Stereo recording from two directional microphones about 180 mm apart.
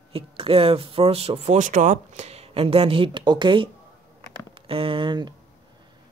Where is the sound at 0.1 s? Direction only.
30° right (ahead or behind).